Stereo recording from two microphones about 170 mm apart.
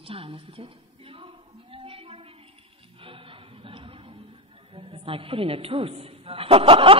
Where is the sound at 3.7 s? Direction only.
30° right (ahead or behind).